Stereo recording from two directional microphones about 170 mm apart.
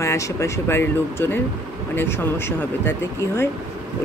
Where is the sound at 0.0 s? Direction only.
20° left (ahead or behind).